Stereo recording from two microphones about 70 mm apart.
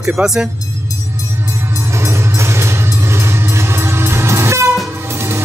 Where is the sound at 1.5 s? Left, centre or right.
Right.